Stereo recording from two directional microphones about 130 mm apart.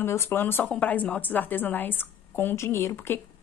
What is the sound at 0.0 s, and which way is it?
A woman's voice, 20° left (ahead or behind).